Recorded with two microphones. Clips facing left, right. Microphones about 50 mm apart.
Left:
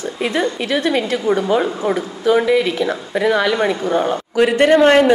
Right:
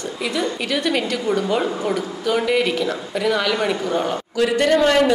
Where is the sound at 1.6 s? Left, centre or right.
Left.